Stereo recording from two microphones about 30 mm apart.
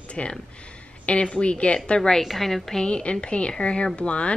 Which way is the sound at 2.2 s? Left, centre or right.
Centre.